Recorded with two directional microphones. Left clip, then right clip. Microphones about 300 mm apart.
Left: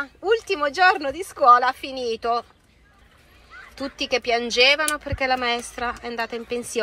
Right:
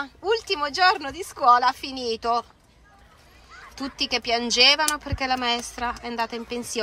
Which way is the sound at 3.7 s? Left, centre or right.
Centre.